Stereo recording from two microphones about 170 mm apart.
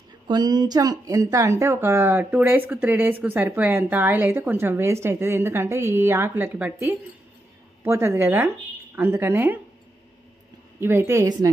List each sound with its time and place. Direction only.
0.3 s speech: 25° right (ahead or behind)
10.8 s speech: 15° right (ahead or behind)